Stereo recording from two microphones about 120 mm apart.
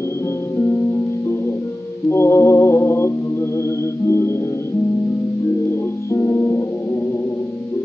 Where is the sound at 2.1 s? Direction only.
20° left (ahead or behind).